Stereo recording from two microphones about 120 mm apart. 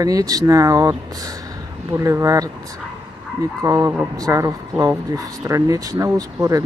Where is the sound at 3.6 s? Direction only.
30° right (ahead or behind).